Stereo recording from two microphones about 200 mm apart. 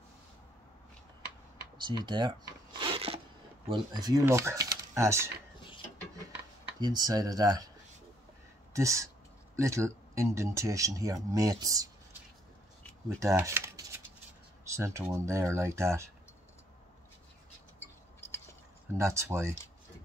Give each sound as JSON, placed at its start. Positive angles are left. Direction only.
{"t": 1.9, "sound": "speech", "side_deg": -25}
{"t": 2.8, "sound": "a sound", "side_deg": -25}
{"t": 3.6, "sound": "speech", "side_deg": -25}
{"t": 6.8, "sound": "speech", "side_deg": -20}
{"t": 8.7, "sound": "speech", "side_deg": -15}
{"t": 13.2, "sound": "shuffling cards", "side_deg": -15}
{"t": 14.7, "sound": "speech", "side_deg": -15}
{"t": 17.7, "sound": "a sound", "side_deg": 10}
{"t": 18.9, "sound": "speech", "side_deg": -15}